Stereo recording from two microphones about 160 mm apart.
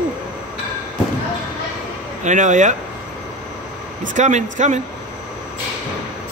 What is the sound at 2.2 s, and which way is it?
Speech, 50° right (ahead or behind).